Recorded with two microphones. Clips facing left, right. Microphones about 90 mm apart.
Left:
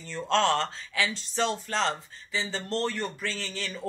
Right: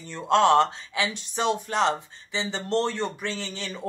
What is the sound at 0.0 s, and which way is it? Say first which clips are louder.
Speech: right 5 dB; 15° right (ahead or behind).